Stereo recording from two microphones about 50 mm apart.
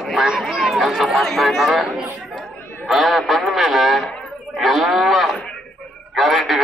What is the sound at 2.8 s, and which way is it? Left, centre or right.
Radio, centre.